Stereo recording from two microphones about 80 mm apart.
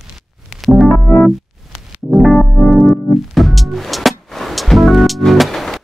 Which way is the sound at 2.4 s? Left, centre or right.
Centre.